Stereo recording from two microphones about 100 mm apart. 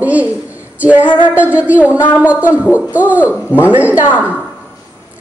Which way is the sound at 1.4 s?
15° right (ahead or behind).